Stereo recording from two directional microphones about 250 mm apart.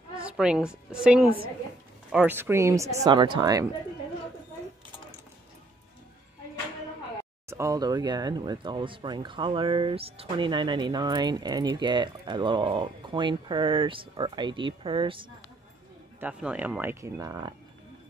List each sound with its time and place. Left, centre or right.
0.2 s a woman's voice: centre
2.9 s speech: right
7.4 s speech: centre
16.2 s speech: centre